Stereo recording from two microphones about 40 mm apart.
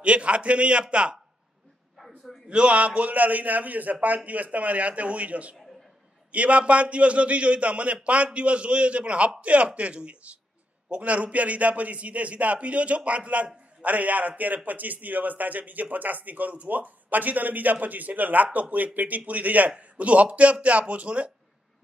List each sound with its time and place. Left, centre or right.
0.0 s a man's voice: right
2.0 s a sound: centre
2.4 s a man's voice: right